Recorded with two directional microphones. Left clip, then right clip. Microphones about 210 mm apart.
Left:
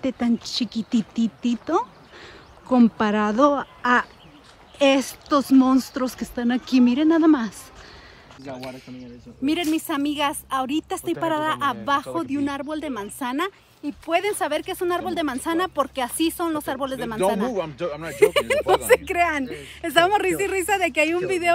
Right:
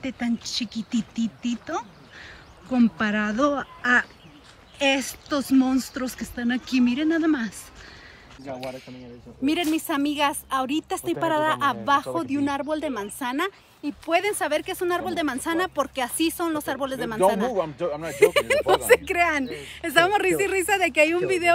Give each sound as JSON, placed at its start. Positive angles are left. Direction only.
{"t": 0.0, "sound": "speech", "side_deg": 15}
{"t": 8.5, "sound": "speech", "side_deg": -5}
{"t": 17.8, "sound": "speech", "side_deg": -40}
{"t": 18.1, "sound": "speech", "side_deg": -5}